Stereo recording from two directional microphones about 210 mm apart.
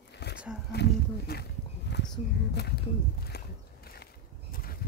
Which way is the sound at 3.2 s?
50° left (ahead or behind).